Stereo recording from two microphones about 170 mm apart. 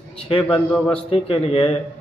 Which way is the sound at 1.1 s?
35° left (ahead or behind).